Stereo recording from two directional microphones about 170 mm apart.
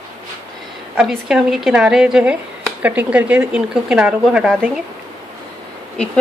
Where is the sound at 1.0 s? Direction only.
Centre (ahead or behind).